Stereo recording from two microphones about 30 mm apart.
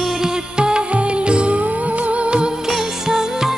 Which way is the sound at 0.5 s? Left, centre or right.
Right.